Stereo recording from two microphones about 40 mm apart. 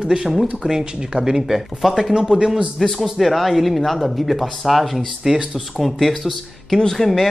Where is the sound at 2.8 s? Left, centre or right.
Centre.